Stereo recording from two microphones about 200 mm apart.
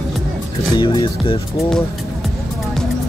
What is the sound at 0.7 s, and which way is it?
Music, 25° left (ahead or behind).